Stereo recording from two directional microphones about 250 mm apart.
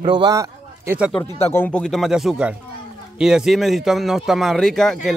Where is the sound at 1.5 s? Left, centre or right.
Centre.